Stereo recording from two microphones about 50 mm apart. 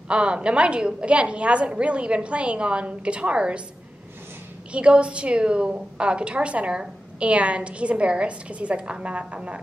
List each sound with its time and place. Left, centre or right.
0.1 s a woman's voice: right
4.7 s a woman's voice: right